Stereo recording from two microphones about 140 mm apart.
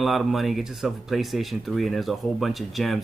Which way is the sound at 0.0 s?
Centre (ahead or behind).